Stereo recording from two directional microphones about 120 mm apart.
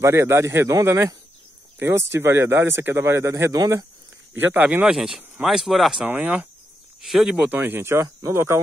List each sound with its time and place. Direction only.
0.0 s speech: 20° right (ahead or behind)
4.3 s speech: 15° right (ahead or behind)
7.0 s speech: centre (ahead or behind)
7.5 s speech: 20° right (ahead or behind)